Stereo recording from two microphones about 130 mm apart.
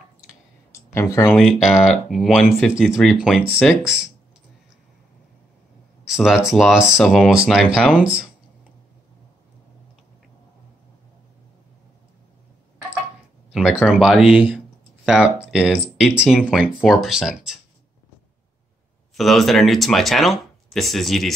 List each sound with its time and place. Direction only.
0.9 s speech: 20° left (ahead or behind)
1.4 s speech: centre (ahead or behind)
6.0 s speech: 5° right (ahead or behind)
13.5 s a sound: centre (ahead or behind)
13.8 s speech: 5° right (ahead or behind)
19.1 s speech: centre (ahead or behind)